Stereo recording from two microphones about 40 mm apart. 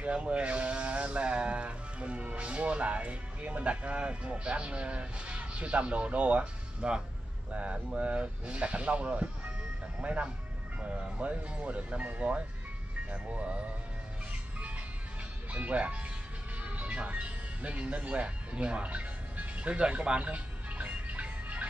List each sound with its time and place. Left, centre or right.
0.0 s speech: right
15.5 s speech: right
16.6 s music: right